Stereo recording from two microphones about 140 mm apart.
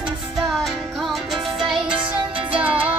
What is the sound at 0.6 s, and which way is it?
Music, centre (ahead or behind).